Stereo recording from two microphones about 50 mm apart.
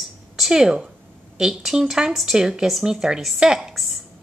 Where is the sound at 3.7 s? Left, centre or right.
Centre.